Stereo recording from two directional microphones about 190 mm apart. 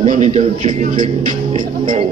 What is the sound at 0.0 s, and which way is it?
A man's voice, 40° right (ahead or behind).